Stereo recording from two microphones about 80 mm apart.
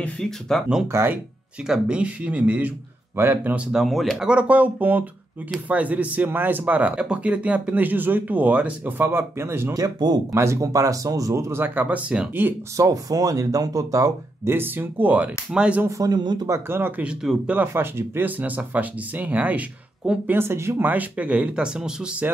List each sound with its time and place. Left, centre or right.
0.0 s speech: centre
0.9 s speech: right
1.7 s speech: centre
3.8 s speech: centre; by 9.8 s right
9.8 s speech: right
10.3 s speech: right; by 12.3 s centre
12.7 s speech: right
14.4 s speech: right
16.0 s speech: right
16.4 s speech: right
17.0 s speech: centre
17.5 s speech: right
20.2 s speech: right
20.8 s speech: right